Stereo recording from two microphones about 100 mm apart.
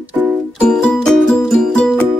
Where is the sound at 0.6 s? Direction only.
5° left (ahead or behind).